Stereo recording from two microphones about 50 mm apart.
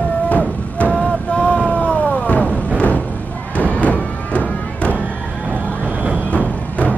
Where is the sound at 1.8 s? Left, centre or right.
Left.